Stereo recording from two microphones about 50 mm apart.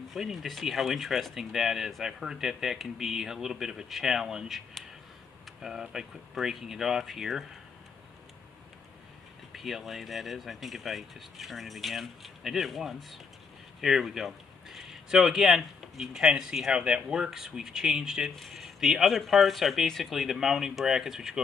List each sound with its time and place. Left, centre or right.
0.1 s speech: centre
9.6 s speech: centre